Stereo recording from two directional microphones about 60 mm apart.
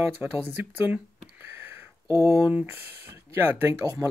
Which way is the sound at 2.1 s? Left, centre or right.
Right.